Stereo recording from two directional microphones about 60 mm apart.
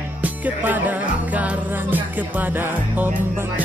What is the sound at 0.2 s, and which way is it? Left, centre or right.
Music, right.